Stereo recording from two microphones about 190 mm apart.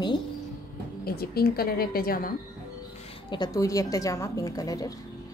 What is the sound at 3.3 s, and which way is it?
A woman's voice, 20° left (ahead or behind).